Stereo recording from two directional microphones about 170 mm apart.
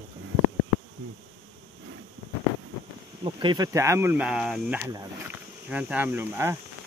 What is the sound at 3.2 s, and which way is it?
Speech, 25° right (ahead or behind).